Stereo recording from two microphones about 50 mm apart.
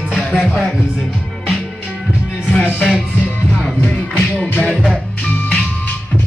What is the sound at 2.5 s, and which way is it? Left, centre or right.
Speech, centre.